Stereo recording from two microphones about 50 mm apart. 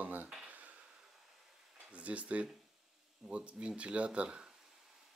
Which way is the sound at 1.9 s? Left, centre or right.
Right.